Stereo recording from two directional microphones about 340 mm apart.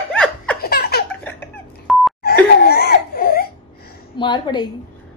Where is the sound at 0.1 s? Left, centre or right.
Centre.